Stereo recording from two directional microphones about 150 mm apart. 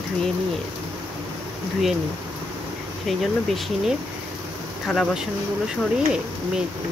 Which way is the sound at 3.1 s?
Centre (ahead or behind).